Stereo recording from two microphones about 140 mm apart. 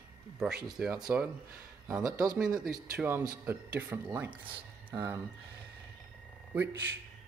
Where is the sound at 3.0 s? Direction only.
15° right (ahead or behind).